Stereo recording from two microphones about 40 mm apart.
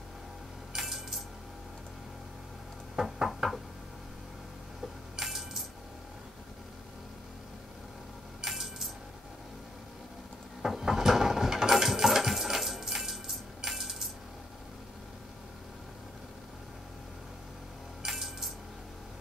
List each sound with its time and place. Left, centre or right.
0.7 s cutlery: centre
3.0 s knock: centre
5.1 s a sound: centre
8.4 s coin: centre
10.6 s coin: centre
18.0 s coin: centre